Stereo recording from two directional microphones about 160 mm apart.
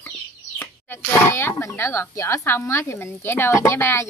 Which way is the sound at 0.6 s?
15° left (ahead or behind).